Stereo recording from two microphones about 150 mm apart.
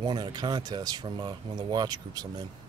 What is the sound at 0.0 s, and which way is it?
Speech, 30° right (ahead or behind).